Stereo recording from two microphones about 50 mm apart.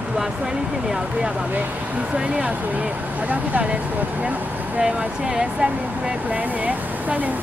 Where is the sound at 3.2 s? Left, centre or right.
Right.